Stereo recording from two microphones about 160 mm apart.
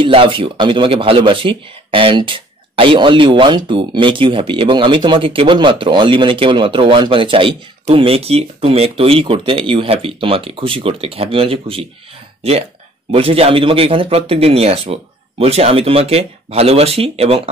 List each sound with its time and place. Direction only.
0.0 s speech: 35° right (ahead or behind)